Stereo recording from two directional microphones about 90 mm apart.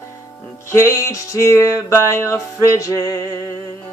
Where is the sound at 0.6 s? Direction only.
35° left (ahead or behind).